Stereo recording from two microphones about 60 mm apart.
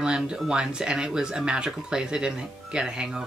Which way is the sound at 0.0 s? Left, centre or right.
Centre.